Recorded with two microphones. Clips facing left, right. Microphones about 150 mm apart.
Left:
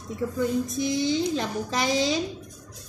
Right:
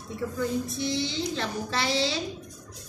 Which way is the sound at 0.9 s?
45° left (ahead or behind).